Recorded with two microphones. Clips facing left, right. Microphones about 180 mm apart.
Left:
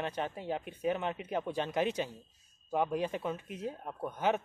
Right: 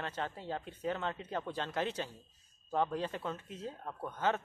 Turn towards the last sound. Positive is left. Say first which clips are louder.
# left 3 dB
turn(degrees=15)  # may be behind; listen again after turning